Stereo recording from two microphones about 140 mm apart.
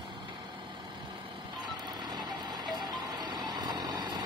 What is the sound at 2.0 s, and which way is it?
Vehicle, 30° right (ahead or behind).